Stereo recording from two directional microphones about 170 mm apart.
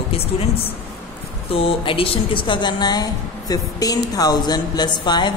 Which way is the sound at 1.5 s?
35° left (ahead or behind).